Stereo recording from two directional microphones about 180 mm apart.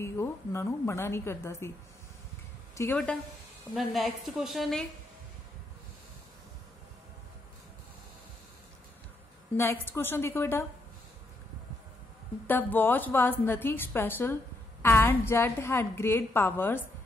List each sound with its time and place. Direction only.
0.0 s a woman's voice: 15° left (ahead or behind)
2.8 s a woman's voice: 15° left (ahead or behind)
3.7 s a woman's voice: centre (ahead or behind)
9.8 s a woman's voice: 10° left (ahead or behind)
12.4 s a woman's voice: 10° left (ahead or behind)